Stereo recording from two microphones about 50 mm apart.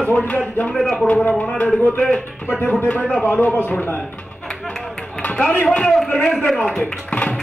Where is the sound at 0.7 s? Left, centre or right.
Centre.